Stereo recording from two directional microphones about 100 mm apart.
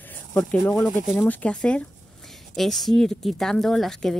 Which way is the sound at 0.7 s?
20° left (ahead or behind).